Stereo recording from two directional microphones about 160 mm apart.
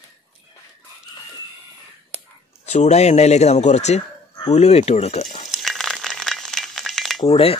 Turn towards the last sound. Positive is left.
turn(degrees=35)  # may be behind; listen again after turning